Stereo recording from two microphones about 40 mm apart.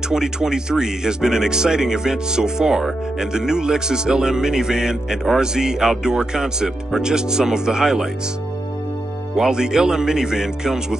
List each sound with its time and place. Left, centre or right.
0.1 s speech: centre
9.4 s speech: centre